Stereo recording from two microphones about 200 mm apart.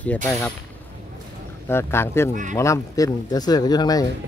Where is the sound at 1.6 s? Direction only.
10° left (ahead or behind).